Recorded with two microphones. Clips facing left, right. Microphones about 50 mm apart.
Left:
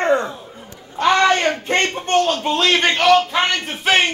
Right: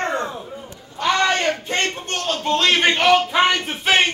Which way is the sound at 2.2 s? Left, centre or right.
Centre.